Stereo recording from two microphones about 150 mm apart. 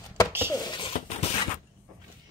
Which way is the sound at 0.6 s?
30° left (ahead or behind).